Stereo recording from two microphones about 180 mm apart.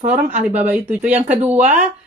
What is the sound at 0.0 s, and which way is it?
Speech, 40° right (ahead or behind).